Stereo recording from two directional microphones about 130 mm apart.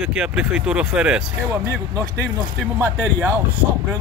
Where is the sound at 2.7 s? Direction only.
15° right (ahead or behind).